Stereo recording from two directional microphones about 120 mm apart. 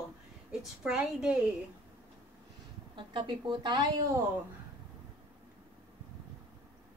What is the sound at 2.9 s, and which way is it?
Speech, 40° right (ahead or behind).